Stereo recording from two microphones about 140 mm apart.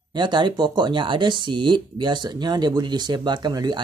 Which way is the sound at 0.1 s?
35° right (ahead or behind).